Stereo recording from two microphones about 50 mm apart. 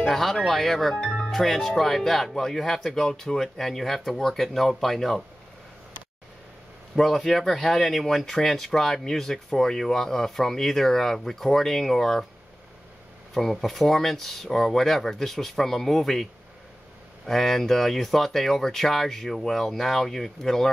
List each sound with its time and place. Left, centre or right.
0.0 s speech: centre
1.0 s music: centre
1.3 s speech: centre
7.0 s speech: centre
13.3 s speech: centre
17.3 s speech: centre